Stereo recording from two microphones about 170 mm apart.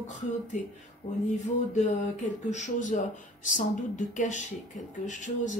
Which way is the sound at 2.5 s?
45° left (ahead or behind).